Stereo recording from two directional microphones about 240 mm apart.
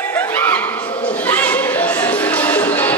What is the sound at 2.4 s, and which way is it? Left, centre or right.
Music, centre.